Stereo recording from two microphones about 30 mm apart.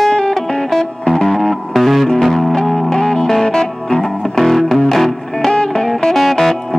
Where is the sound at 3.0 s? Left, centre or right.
Left.